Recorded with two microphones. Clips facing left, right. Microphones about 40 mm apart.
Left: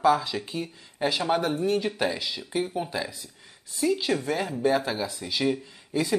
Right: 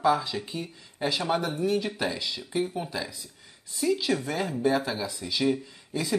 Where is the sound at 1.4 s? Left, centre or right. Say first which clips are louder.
Left 2 dB; left.